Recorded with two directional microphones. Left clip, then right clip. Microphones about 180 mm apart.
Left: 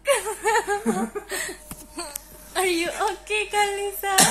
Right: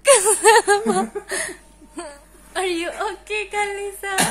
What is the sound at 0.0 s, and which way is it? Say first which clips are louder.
Laughter: right 9 dB; 80° right.